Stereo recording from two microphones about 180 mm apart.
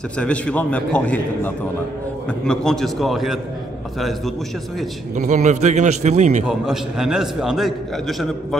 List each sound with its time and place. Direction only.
0.2 s a man's voice: 5° left (ahead or behind)
5.1 s a man's voice: 40° right (ahead or behind)
6.4 s a man's voice: 5° right (ahead or behind)